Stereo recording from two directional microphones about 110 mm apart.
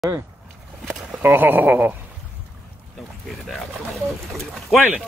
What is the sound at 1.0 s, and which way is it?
Speech, 15° right (ahead or behind).